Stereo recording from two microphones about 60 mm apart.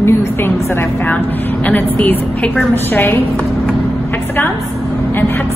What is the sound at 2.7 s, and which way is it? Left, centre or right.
Speech, left.